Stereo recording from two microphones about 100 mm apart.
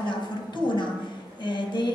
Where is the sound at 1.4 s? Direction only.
50° left (ahead or behind).